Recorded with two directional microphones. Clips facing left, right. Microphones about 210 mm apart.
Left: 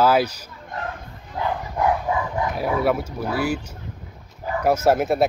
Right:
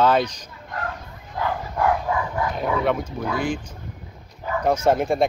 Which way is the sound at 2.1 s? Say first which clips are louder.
Left 1 dB; 20° left (ahead or behind).